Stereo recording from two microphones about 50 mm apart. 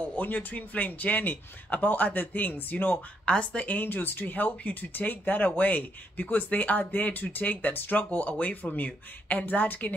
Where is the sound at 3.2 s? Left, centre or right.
Left.